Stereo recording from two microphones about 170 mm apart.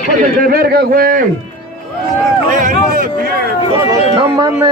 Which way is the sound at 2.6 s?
55° right (ahead or behind).